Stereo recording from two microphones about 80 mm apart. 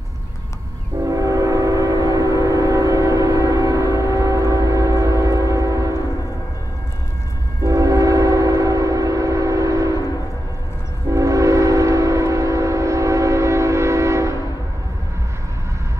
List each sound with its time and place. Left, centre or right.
1.0 s train: right
7.6 s train: right
11.1 s train: right